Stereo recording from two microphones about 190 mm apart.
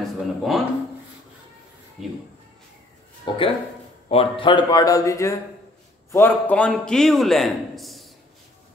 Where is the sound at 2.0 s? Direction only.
Centre (ahead or behind).